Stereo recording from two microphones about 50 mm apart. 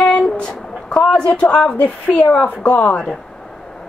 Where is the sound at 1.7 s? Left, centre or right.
Left.